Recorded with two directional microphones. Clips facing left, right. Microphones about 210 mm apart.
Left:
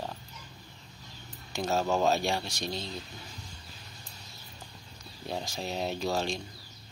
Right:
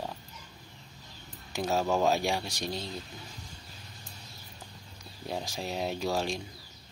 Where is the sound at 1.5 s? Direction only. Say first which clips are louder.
Even; 10° right (ahead or behind).